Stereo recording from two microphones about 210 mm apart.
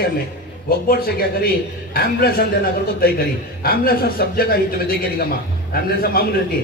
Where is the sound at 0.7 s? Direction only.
45° left (ahead or behind).